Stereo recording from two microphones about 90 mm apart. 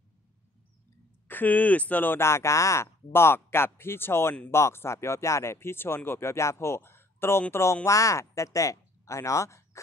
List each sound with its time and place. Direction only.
1.2 s speech: 20° left (ahead or behind)
3.1 s speech: 25° left (ahead or behind)